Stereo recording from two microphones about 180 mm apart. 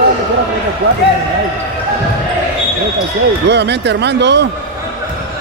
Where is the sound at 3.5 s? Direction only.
70° right (ahead or behind).